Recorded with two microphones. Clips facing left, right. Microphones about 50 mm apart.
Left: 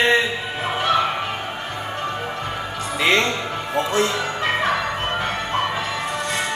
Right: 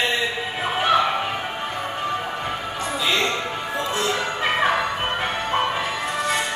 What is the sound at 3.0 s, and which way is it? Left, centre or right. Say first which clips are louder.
Music: left 4 dB; left.